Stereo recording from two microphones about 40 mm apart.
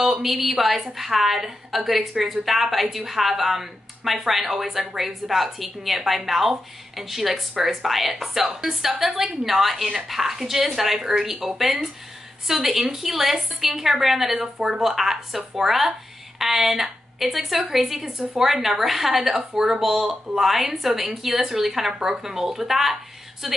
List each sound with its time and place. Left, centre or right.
0.0 s a woman's voice: centre
0.4 s a woman's voice: centre